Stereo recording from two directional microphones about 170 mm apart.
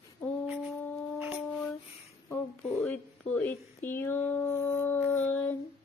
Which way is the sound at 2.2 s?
10° left (ahead or behind).